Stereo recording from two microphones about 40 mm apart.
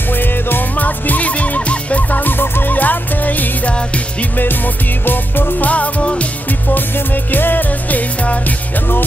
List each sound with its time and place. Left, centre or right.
0.1 s music: left
2.7 s music: left
5.0 s music: left
5.7 s music: left
7.2 s music: left
8.2 s music: left